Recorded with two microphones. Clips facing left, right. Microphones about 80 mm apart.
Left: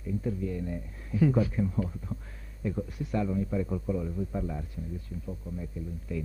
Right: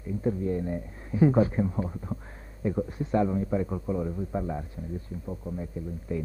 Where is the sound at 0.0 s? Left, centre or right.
Right.